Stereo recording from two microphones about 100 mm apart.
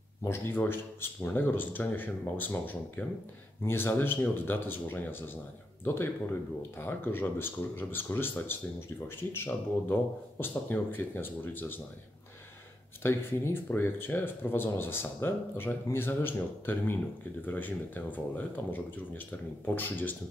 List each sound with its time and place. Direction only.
0.2 s speech: 25° left (ahead or behind)
6.8 s speech: 20° left (ahead or behind)
13.0 s speech: 25° left (ahead or behind)